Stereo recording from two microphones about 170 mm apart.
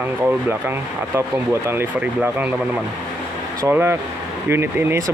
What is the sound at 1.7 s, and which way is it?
Speech, 15° right (ahead or behind).